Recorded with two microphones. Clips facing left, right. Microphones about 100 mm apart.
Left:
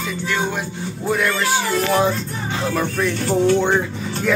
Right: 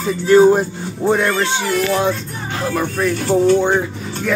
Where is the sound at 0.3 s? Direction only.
40° right (ahead or behind).